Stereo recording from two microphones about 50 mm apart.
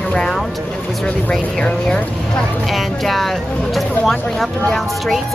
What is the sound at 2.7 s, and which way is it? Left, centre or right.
Speech, centre.